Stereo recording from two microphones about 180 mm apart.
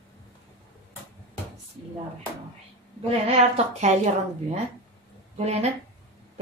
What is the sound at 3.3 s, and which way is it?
Speech, 40° right (ahead or behind).